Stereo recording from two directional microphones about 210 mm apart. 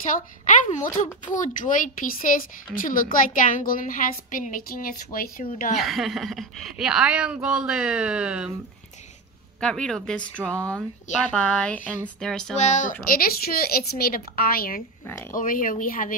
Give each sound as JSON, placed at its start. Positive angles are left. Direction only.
{"t": 0.1, "sound": "a woman's voice", "side_deg": 35}
{"t": 5.8, "sound": "a woman's voice", "side_deg": 0}
{"t": 9.6, "sound": "a woman's voice", "side_deg": 5}
{"t": 12.5, "sound": "a woman's voice", "side_deg": 35}